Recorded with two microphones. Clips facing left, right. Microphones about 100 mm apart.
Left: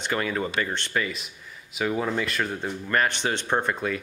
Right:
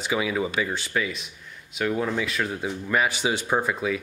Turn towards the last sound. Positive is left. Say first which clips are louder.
# right 1 dB
turn(degrees=-5)  # may be behind; listen again after turning